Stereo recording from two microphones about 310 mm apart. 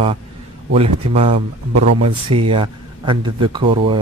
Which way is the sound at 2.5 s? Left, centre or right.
Centre.